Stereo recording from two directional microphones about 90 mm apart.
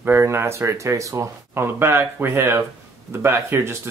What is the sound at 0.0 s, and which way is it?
Speech, 25° right (ahead or behind).